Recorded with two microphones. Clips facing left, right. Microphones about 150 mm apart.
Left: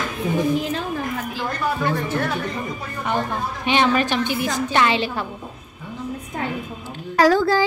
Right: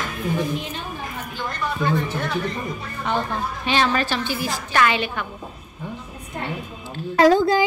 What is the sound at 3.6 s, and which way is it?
A woman's voice, 15° left (ahead or behind).